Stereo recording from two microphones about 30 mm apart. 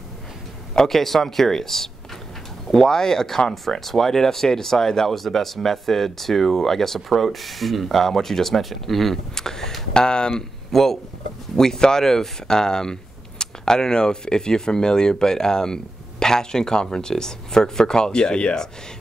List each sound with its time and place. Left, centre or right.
0.8 s speech: centre
9.3 s speech: centre
9.9 s speech: left
10.3 s speech: centre; by 18.6 s left